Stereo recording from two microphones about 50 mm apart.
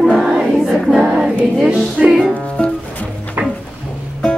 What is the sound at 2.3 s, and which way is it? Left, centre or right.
Music, left.